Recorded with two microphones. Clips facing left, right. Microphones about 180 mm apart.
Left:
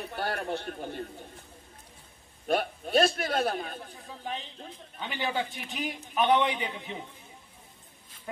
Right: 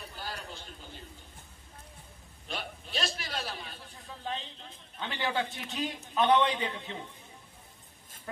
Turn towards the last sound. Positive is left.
turn(degrees=15)  # may be behind; listen again after turning